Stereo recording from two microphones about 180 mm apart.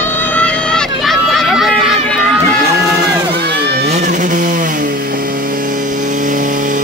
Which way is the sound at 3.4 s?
65° right (ahead or behind).